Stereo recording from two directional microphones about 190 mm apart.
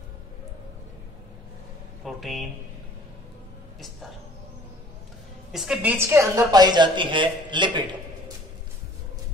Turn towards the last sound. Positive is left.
turn(degrees=-25)  # may be behind; listen again after turning